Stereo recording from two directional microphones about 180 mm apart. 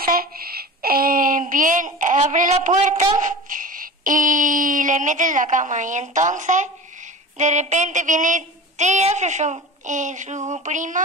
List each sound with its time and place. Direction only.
0.0 s speech: 55° right (ahead or behind)
3.2 s a sound: 45° right (ahead or behind)
7.3 s speech: 40° right (ahead or behind)